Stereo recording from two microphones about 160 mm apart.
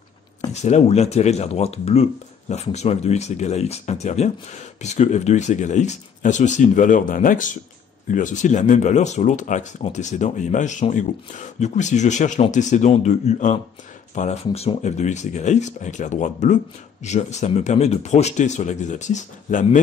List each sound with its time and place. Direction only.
0.5 s speech: 45° left (ahead or behind)